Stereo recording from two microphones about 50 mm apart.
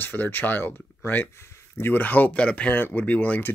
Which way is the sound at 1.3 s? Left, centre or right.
Left.